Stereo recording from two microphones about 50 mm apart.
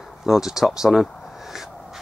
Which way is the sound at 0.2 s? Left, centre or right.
Centre.